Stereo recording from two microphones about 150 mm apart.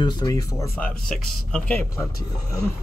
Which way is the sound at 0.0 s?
25° left (ahead or behind).